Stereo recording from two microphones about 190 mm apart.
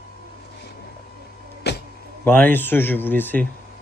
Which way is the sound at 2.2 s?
10° left (ahead or behind).